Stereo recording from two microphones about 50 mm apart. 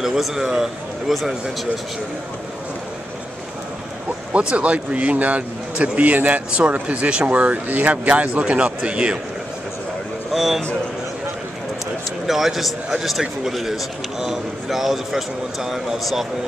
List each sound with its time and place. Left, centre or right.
0.0 s a man's voice: centre
4.3 s a man's voice: right
10.3 s a man's voice: centre
12.3 s a man's voice: centre